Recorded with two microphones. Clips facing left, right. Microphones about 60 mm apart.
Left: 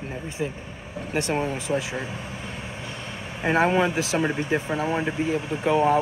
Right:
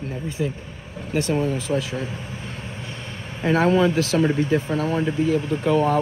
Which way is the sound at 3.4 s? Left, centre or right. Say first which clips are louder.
Right 3 dB; centre.